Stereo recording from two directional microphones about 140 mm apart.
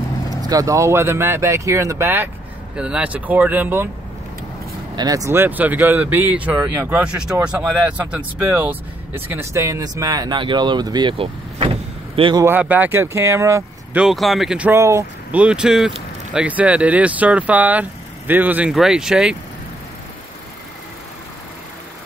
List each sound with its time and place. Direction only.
0.3 s speech: 25° right (ahead or behind)
2.7 s speech: 5° right (ahead or behind)
4.9 s speech: 25° right (ahead or behind); by 7.3 s 10° right (ahead or behind)
7.3 s speech: 20° right (ahead or behind); by 12.4 s 40° right (ahead or behind)
12.4 s speech: 15° right (ahead or behind)
13.9 s speech: centre (ahead or behind)
14.7 s speech: 20° right (ahead or behind)
15.3 s speech: 10° right (ahead or behind)